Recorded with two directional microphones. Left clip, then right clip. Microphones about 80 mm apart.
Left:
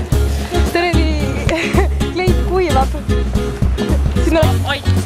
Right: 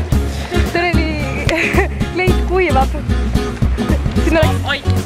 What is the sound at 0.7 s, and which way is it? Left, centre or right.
Music, left.